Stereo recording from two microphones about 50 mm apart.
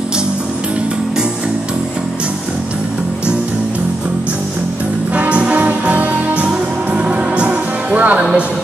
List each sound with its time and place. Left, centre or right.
5.1 s music: right
7.1 s music: right